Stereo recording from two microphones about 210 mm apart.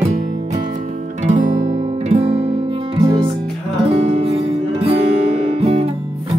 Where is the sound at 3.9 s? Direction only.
30° right (ahead or behind).